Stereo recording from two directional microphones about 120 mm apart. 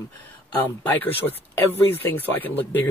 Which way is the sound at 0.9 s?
15° left (ahead or behind).